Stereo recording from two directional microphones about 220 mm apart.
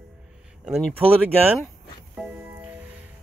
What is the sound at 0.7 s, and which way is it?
Speech, centre (ahead or behind).